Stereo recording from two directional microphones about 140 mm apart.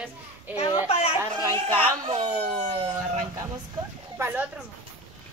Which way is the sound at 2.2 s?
55° right (ahead or behind).